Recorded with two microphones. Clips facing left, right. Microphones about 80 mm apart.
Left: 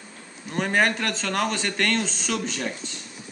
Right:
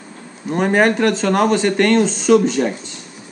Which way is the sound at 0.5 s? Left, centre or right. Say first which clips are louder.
Right 8 dB; centre.